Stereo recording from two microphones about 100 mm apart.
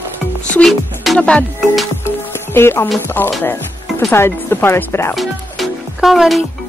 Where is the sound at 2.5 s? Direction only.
20° left (ahead or behind).